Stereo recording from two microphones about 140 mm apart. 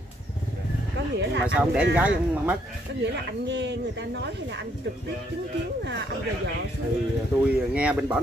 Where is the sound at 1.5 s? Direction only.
10° right (ahead or behind).